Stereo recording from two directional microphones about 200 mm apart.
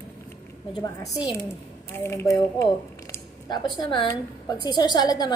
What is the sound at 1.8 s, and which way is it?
A woman's voice, 15° left (ahead or behind).